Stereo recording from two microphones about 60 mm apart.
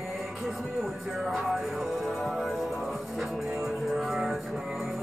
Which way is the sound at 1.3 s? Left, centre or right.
Centre.